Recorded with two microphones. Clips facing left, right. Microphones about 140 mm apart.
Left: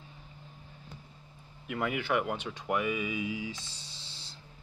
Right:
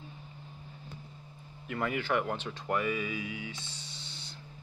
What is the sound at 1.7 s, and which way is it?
Speech, 10° left (ahead or behind).